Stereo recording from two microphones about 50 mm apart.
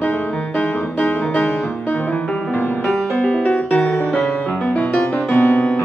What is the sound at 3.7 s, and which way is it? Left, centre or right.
Music, centre.